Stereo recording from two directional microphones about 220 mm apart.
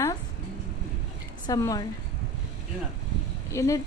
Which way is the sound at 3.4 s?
15° left (ahead or behind).